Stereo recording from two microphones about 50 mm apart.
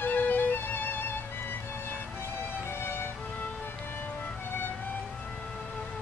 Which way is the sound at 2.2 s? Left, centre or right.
Left.